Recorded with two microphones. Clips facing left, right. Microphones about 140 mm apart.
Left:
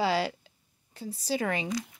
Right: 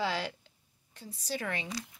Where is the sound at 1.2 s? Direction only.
90° left.